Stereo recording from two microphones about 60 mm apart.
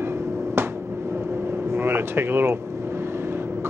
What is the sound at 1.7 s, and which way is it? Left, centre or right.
Speech, right.